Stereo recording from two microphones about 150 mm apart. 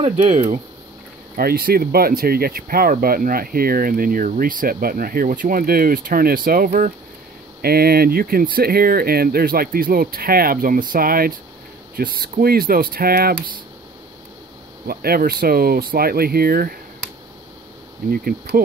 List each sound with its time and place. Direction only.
1.3 s speech: 80° right
7.6 s speech: 90° right
14.9 s speech: 85° right